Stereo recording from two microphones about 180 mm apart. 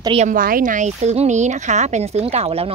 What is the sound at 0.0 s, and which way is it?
Speech, 30° right (ahead or behind).